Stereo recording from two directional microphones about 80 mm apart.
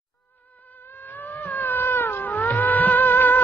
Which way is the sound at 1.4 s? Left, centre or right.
Left.